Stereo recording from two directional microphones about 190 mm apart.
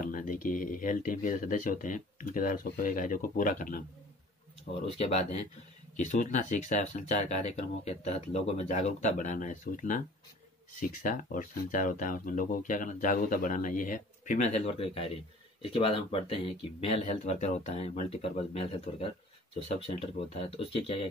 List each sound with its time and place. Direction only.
0.0 s speech: 45° left (ahead or behind)
4.8 s speech: 30° left (ahead or behind)
20.3 s speech: 30° left (ahead or behind)